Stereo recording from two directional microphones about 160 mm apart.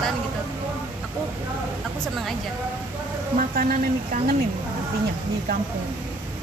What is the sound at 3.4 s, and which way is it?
Speech, 60° right (ahead or behind).